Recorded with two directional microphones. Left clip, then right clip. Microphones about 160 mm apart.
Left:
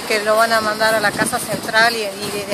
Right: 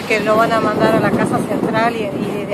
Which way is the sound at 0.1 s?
5° left (ahead or behind).